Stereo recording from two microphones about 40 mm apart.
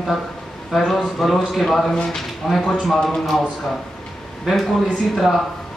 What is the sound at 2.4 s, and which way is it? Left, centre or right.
Speech, centre.